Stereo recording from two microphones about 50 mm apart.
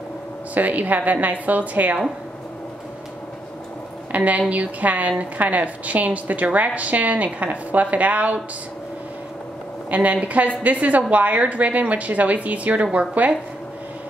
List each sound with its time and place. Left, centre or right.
0.6 s a woman's voice: right
4.1 s a woman's voice: right
9.8 s a woman's voice: right